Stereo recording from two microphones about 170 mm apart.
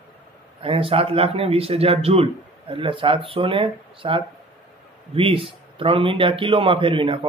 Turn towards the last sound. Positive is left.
turn(degrees=-30)  # may be behind; listen again after turning